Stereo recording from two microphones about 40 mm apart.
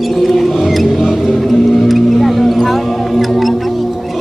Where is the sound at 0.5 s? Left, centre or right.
Centre.